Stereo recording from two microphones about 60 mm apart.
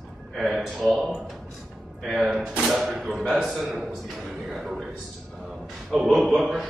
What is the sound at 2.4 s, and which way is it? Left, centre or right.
Speech, centre.